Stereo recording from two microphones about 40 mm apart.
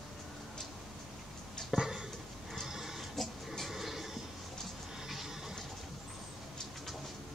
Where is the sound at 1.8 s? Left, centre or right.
Centre.